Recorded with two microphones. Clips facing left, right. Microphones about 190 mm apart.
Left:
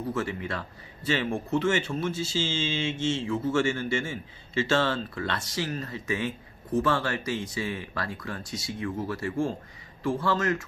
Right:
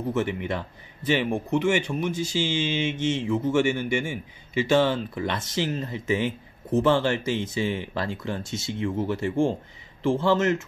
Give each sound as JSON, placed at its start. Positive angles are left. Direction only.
{"t": 0.1, "sound": "speech", "side_deg": -20}